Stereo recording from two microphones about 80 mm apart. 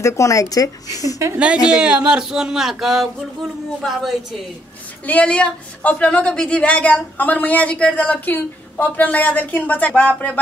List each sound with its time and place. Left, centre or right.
0.0 s speech: left
1.4 s speech: centre
5.0 s speech: centre